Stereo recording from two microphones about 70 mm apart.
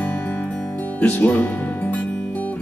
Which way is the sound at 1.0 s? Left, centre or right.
Left.